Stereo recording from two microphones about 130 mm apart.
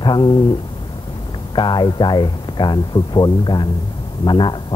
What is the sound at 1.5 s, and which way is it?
A man's voice, 35° left (ahead or behind).